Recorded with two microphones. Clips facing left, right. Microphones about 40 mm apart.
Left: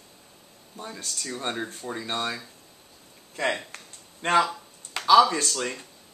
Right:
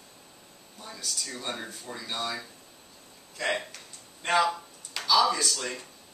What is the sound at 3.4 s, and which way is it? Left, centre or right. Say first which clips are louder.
Speech: left 3 dB; left.